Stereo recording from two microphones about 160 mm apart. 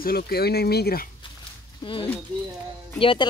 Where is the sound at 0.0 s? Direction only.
75° left (ahead or behind).